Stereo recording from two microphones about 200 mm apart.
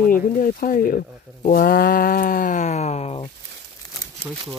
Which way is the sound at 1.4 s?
45° left (ahead or behind).